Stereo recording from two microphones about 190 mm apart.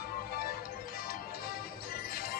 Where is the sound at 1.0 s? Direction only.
50° left (ahead or behind).